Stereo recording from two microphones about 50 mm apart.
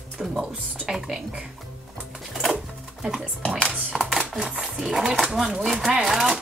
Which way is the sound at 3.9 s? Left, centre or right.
Centre.